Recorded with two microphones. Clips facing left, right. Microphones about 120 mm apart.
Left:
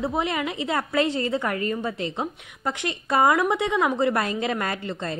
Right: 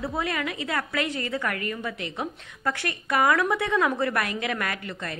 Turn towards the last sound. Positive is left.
turn(degrees=25)  # may be behind; listen again after turning